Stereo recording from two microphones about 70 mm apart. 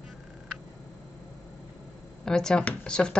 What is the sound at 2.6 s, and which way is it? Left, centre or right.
Speech, left.